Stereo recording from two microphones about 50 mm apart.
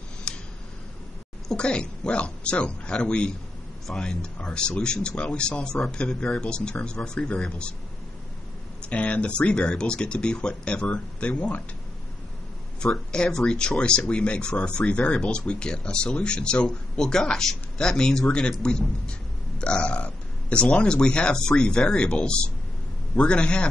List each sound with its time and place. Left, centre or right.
0.3 s a sound: centre
1.5 s speech: centre
8.8 s speech: left
12.8 s speech: centre